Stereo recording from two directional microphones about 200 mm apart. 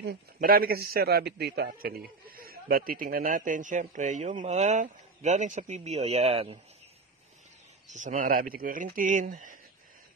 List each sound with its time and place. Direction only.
0.0 s a man's voice: 50° right (ahead or behind); by 6.6 s 30° right (ahead or behind)
7.9 s speech: 35° right (ahead or behind)